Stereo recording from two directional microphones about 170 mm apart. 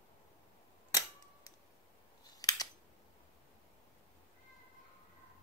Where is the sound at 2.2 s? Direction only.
20° left (ahead or behind).